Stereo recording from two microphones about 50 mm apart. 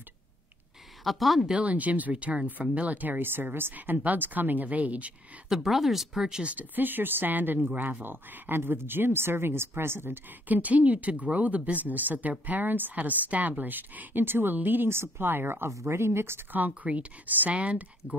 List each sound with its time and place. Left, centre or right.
1.0 s speech: centre
1.6 s speech: right
5.5 s speech: centre
6.2 s speech: centre
6.5 s speech: right
10.5 s speech: right
15.7 s speech: right
16.5 s speech: right